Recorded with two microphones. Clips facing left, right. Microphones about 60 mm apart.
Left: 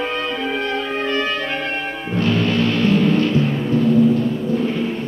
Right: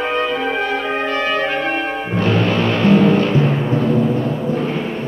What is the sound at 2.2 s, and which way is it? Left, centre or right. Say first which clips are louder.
Music: right 1 dB; right.